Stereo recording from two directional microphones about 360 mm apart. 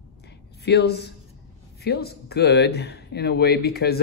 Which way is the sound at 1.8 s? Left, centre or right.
Left.